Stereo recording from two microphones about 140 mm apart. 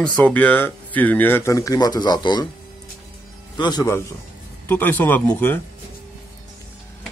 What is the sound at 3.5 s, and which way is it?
Speech, 30° left (ahead or behind).